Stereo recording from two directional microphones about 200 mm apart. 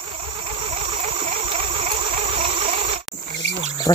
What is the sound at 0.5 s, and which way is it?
Vehicle, 30° right (ahead or behind).